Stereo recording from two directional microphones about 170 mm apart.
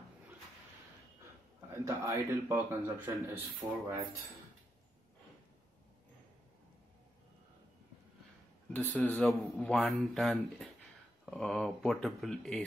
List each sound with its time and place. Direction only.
1.9 s speech: 15° right (ahead or behind)
8.7 s speech: 10° left (ahead or behind)